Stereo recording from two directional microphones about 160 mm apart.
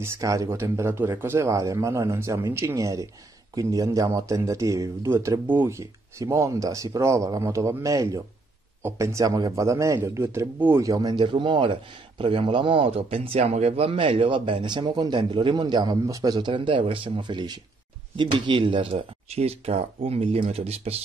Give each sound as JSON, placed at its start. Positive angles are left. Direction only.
{"t": 0.0, "sound": "speech", "side_deg": -20}